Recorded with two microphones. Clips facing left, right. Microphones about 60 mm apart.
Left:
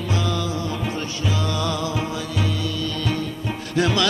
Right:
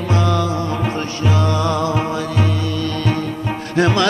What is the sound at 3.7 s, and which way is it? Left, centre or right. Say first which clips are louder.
Music: right 5 dB; right.